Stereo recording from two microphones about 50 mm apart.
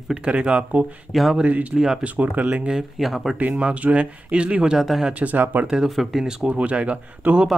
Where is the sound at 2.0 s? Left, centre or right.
Right.